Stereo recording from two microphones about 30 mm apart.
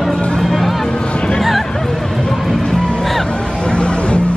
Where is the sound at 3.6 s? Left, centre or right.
Left.